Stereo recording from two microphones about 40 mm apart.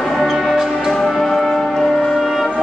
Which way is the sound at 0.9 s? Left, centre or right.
Centre.